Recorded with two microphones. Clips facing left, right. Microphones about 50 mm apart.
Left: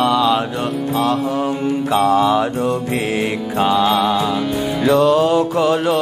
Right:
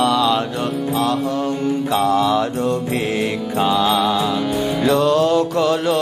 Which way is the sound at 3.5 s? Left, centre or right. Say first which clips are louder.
Left 2 dB; centre.